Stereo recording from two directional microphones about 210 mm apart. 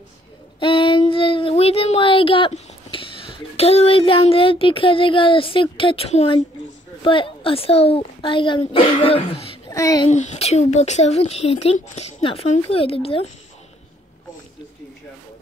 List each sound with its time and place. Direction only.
0.6 s child singing: 25° left (ahead or behind)
7.0 s a woman's voice: 25° left (ahead or behind)
9.7 s speech: 15° left (ahead or behind)
10.0 s speech: 35° left (ahead or behind)